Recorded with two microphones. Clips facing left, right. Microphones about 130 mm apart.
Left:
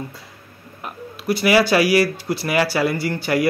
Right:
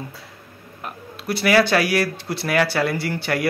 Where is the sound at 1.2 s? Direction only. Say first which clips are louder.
Left 1 dB; centre (ahead or behind).